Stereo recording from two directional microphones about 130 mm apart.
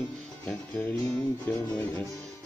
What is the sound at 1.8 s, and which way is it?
Music, 10° left (ahead or behind).